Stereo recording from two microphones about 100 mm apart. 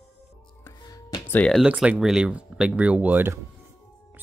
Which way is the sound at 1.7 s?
10° right (ahead or behind).